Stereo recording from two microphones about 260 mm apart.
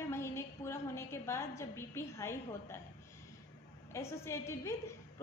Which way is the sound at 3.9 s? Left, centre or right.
Centre.